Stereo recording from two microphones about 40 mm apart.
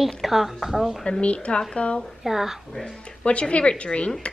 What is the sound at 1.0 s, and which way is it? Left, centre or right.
Speech, left.